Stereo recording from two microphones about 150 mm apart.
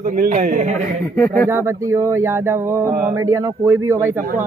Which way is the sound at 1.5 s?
15° right (ahead or behind).